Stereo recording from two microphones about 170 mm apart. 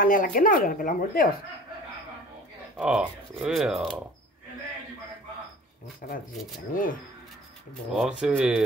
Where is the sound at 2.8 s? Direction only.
5° right (ahead or behind).